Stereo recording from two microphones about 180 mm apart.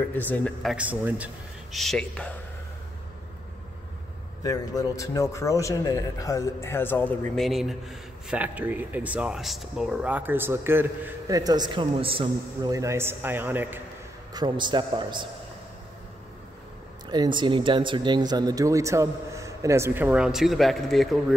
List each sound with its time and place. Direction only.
0.1 s speech: 10° left (ahead or behind)
4.4 s a man's voice: 20° left (ahead or behind); by 12.7 s 30° right (ahead or behind)
12.7 s speech: 15° right (ahead or behind)
14.3 s a man's voice: 25° right (ahead or behind)
17.1 s speech: 25° right (ahead or behind); by 21.2 s centre (ahead or behind)